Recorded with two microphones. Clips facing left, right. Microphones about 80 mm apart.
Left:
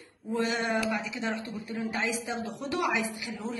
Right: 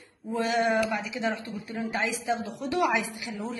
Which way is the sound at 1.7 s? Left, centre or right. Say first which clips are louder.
Right 2 dB; right.